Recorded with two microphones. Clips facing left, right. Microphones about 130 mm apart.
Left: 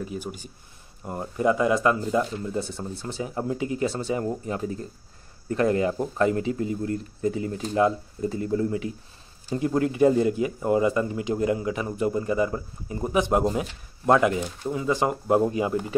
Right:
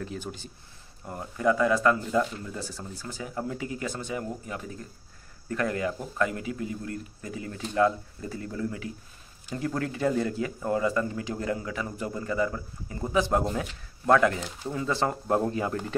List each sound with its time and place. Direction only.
0.0 s speech: 10° left (ahead or behind)
1.0 s speech: 25° left (ahead or behind)